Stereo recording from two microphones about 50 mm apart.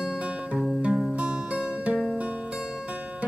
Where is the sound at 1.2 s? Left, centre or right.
Right.